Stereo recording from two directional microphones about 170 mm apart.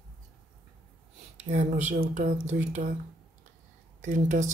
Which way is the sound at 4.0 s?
45° right (ahead or behind).